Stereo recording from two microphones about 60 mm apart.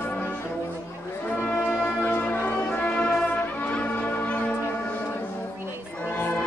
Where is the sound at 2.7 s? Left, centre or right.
Centre.